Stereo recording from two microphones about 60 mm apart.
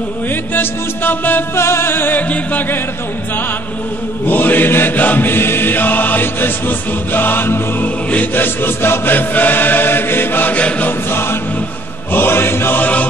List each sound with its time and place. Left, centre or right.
0.6 s chant: left
1.5 s chant: left
2.2 s music: left
4.3 s chant: left
8.1 s music: left
8.6 s chant: left